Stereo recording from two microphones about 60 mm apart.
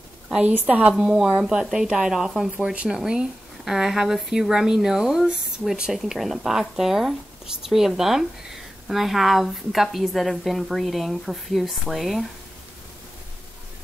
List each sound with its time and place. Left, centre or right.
0.4 s a woman's voice: right
0.9 s a woman's voice: centre